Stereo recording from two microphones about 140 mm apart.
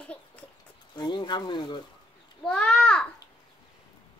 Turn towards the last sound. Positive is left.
turn(degrees=10)  # may be behind; listen again after turning